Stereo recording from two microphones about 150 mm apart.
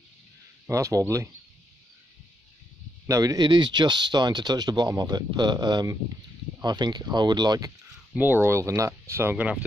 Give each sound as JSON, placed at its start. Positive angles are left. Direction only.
{"t": 0.7, "sound": "speech", "side_deg": -20}
{"t": 3.1, "sound": "speech", "side_deg": -25}
{"t": 8.1, "sound": "speech", "side_deg": -10}